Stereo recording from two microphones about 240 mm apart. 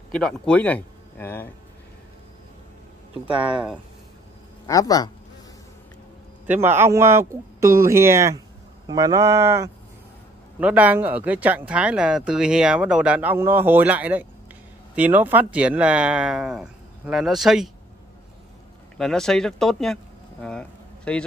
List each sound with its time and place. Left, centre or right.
0.1 s speech: centre
3.3 s speech: centre
4.6 s speech: centre
6.4 s speech: centre
18.9 s speech: centre
20.4 s a sound: centre